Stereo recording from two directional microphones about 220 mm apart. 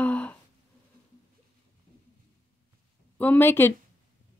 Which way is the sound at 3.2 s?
10° left (ahead or behind).